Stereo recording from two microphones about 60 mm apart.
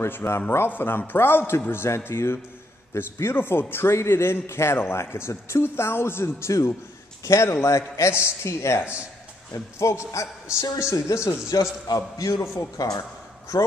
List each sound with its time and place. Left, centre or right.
0.0 s a man's voice: left
7.2 s a man's voice: left
13.5 s a man's voice: left